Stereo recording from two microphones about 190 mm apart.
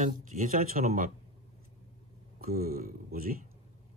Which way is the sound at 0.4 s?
45° right (ahead or behind).